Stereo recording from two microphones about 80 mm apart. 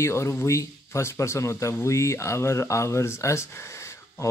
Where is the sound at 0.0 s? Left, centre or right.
Left.